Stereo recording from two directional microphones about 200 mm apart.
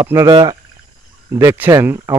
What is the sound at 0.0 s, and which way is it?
Speech, 15° right (ahead or behind).